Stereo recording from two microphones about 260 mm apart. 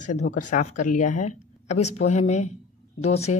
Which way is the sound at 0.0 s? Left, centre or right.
Left.